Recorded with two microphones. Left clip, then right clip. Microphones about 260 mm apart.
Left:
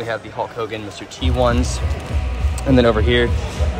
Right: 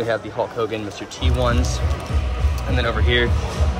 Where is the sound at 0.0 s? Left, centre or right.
Centre.